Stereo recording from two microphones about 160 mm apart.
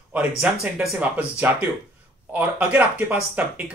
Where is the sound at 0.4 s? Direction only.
10° right (ahead or behind).